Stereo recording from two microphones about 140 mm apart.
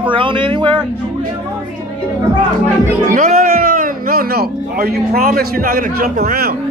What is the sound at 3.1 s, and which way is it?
A man's voice, 65° right (ahead or behind).